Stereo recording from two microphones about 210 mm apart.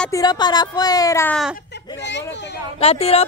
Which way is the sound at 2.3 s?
55° left (ahead or behind).